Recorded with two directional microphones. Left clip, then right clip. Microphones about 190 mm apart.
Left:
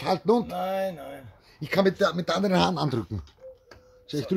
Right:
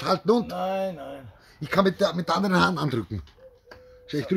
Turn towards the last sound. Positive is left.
turn(degrees=5)  # may be behind; listen again after turning